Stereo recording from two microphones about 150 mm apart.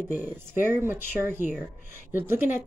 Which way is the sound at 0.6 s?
15° right (ahead or behind).